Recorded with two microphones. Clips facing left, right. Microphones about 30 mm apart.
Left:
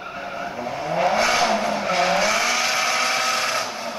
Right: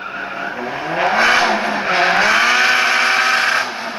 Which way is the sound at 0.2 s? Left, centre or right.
Right.